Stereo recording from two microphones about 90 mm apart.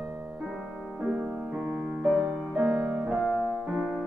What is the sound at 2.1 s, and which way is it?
Music, 10° right (ahead or behind).